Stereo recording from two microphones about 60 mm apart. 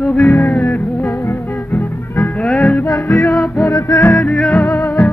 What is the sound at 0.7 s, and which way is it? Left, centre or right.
Music, left.